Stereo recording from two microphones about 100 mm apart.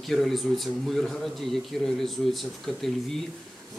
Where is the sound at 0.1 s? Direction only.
Centre (ahead or behind).